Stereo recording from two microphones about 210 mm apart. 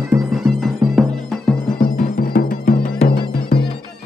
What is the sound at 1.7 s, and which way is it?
Music, 45° left (ahead or behind).